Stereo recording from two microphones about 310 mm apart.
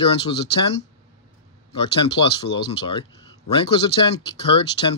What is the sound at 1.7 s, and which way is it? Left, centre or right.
Speech, centre.